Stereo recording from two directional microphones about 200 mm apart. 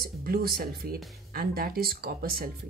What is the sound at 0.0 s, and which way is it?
Speech, 50° right (ahead or behind).